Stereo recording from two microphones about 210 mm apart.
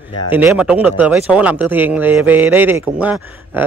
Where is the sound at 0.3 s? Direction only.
10° right (ahead or behind).